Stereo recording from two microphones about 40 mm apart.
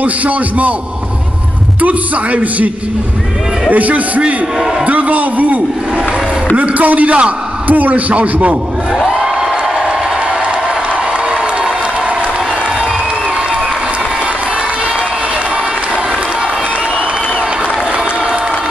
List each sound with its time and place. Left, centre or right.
0.0 s a man's voice: right
1.8 s a man's voice: right
3.7 s a man's voice: right
8.9 s crowd: centre